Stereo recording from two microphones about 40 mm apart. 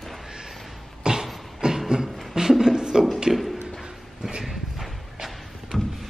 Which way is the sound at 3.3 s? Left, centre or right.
Centre.